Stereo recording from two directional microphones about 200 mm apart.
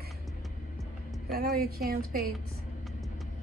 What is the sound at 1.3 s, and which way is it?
Speech, 50° right (ahead or behind).